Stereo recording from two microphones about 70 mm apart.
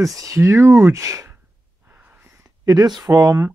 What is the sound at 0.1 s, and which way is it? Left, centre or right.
Speech, right.